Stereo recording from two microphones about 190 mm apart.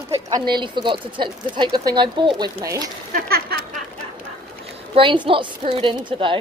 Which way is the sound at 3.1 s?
55° right (ahead or behind).